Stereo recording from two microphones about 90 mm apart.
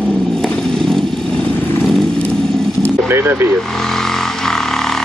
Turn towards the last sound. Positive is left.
turn(degrees=-25)  # may be behind; listen again after turning